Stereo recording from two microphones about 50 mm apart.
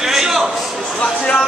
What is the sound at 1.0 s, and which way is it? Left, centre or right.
Speech, left.